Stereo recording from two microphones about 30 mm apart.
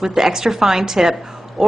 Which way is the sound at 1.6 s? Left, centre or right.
Centre.